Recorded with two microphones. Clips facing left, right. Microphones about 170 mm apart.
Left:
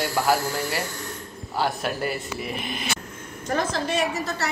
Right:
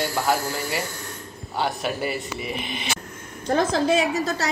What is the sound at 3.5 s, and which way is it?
Speech, 35° right (ahead or behind).